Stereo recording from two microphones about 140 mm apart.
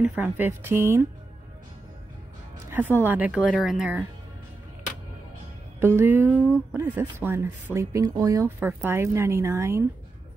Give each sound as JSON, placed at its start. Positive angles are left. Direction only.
{"t": 0.0, "sound": "speech", "side_deg": -10}
{"t": 3.0, "sound": "speech", "side_deg": -10}
{"t": 3.5, "sound": "speech", "side_deg": 0}
{"t": 5.8, "sound": "speech", "side_deg": -15}